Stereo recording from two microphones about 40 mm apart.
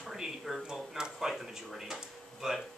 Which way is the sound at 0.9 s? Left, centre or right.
Centre.